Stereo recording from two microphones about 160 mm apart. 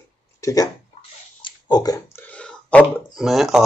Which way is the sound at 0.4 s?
20° left (ahead or behind).